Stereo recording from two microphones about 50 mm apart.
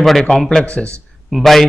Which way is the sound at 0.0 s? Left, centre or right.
Centre.